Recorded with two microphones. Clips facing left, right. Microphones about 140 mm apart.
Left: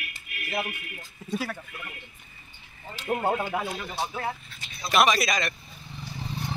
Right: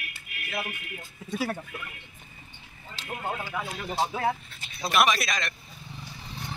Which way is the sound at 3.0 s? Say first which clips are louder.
Left 7 dB; 55° left (ahead or behind).